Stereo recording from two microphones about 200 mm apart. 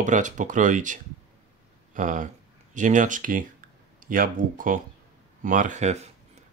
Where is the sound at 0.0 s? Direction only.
40° right (ahead or behind).